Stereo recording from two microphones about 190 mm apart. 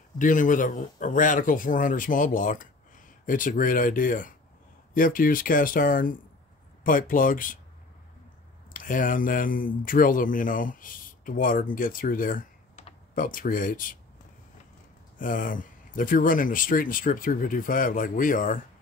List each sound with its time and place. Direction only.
0.2 s speech: 45° left (ahead or behind)
8.7 s speech: 45° left (ahead or behind)
15.1 s speech: 45° left (ahead or behind)